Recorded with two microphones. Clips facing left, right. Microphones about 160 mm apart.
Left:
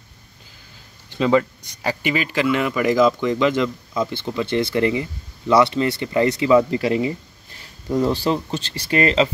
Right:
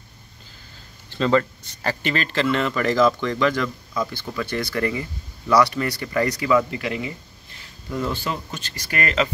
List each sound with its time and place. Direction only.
1.1 s speech: 15° left (ahead or behind)